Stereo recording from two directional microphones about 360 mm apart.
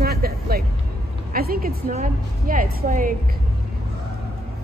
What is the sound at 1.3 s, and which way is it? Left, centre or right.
Speech, right.